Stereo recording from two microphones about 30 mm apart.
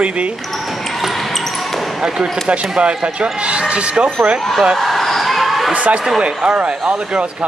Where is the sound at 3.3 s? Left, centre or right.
Right.